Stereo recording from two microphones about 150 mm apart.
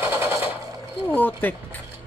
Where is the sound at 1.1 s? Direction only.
10° left (ahead or behind).